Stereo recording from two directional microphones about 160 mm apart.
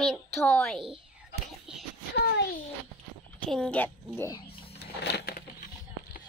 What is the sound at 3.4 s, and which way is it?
Speech, 5° left (ahead or behind).